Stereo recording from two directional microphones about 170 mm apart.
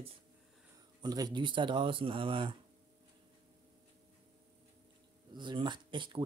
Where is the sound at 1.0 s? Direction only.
20° right (ahead or behind).